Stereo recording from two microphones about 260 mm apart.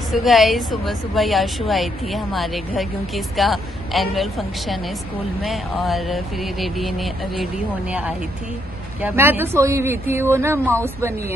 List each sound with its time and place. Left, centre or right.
0.1 s a woman's voice: centre